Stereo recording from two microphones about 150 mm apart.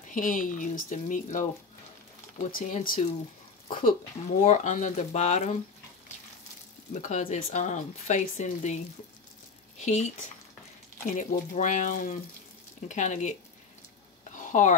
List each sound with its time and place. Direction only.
0.1 s speech: 65° left (ahead or behind)
2.4 s speech: 65° left (ahead or behind)
4.4 s speech: 55° left (ahead or behind)
6.9 s speech: 55° left (ahead or behind)
9.8 s speech: 50° left (ahead or behind)
14.3 s a sound: 60° left (ahead or behind)